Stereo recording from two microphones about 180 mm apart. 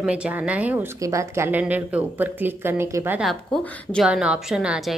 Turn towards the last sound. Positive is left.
turn(degrees=-5)  # may be behind; listen again after turning